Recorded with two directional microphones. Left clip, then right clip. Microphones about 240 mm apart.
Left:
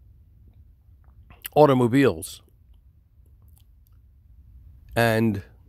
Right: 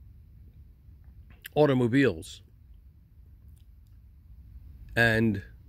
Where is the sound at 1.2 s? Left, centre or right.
Left.